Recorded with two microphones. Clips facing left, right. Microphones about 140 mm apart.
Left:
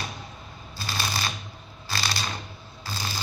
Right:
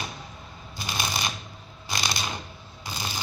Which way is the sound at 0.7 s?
15° right (ahead or behind).